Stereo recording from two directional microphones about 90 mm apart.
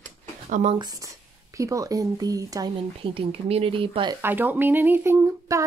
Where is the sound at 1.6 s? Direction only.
40° right (ahead or behind).